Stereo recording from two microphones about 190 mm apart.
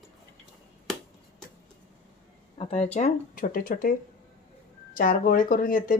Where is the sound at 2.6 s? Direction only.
35° left (ahead or behind); by 3.9 s 50° left (ahead or behind).